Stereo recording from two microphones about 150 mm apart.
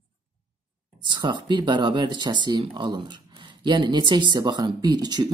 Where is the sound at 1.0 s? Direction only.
30° right (ahead or behind).